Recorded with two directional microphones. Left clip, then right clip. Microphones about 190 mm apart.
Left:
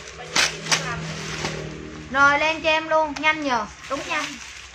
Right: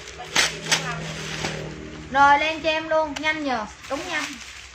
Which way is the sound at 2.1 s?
15° left (ahead or behind).